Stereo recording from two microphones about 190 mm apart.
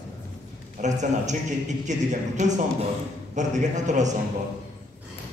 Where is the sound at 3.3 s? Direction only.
40° right (ahead or behind).